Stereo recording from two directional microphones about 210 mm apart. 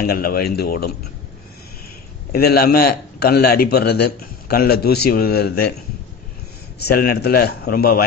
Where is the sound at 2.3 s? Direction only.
45° left (ahead or behind).